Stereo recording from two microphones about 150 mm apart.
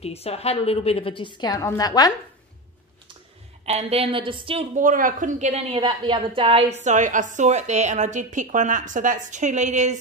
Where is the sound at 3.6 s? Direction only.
40° right (ahead or behind).